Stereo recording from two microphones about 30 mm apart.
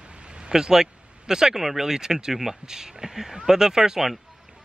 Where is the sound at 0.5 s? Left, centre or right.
Centre.